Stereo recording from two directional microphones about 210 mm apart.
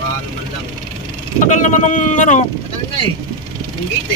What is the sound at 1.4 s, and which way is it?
Speech, 35° left (ahead or behind).